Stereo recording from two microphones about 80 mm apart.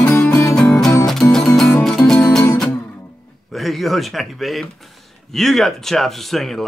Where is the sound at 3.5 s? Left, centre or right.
Centre.